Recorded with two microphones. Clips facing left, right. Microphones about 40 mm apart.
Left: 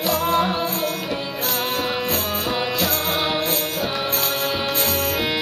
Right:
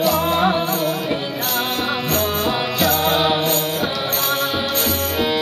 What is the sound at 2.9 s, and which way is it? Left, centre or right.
Music, right.